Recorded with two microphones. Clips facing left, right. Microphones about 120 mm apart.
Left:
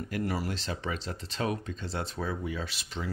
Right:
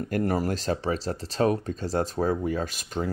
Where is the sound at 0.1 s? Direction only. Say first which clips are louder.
Right 7 dB; 45° right (ahead or behind).